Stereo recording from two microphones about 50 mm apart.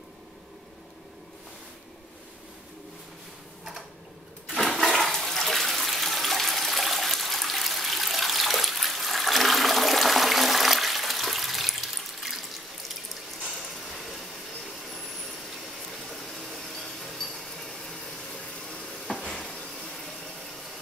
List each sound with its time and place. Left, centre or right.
4.5 s toilet flush: centre
16.1 s a sound: centre
18.7 s stir: centre
19.2 s stir: centre